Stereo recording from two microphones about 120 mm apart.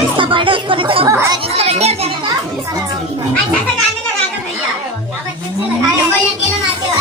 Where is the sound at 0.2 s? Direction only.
45° right (ahead or behind).